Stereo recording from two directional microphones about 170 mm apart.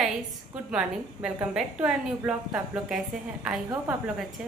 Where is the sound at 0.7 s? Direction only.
5° right (ahead or behind).